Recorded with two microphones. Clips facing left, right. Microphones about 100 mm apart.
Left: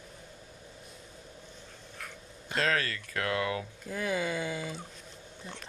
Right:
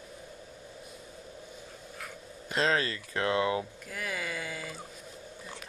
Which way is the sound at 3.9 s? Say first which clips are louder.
Left 6 dB; 25° left (ahead or behind).